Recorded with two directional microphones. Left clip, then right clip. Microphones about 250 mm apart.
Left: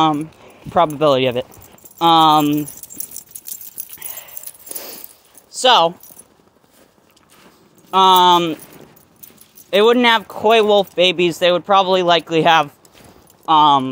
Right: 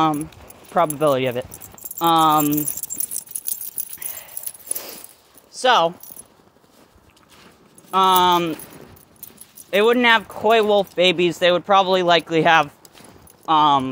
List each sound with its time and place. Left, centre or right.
0.0 s speech: left
2.5 s keys jangling: right; by 3.8 s centre
3.9 s dog: centre
4.6 s keys jangling: centre
5.5 s speech: left
7.9 s speech: left
9.7 s speech: left